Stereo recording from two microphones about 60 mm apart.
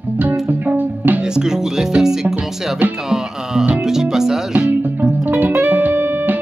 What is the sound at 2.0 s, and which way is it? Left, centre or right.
Music, centre.